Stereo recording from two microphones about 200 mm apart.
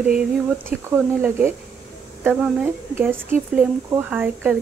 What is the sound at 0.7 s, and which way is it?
A woman's voice, 10° right (ahead or behind).